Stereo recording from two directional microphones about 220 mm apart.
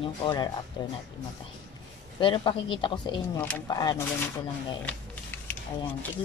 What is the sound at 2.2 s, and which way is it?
Speech, 25° left (ahead or behind).